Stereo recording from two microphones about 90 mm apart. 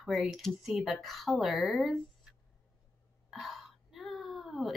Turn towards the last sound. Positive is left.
turn(degrees=0)  # may be behind; listen again after turning